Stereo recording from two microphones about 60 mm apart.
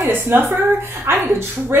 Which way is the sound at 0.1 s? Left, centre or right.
Right.